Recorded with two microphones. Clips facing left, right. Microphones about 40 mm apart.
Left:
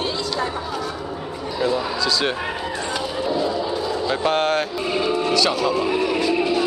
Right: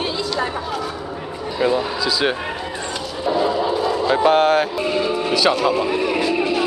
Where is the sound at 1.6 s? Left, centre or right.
Centre.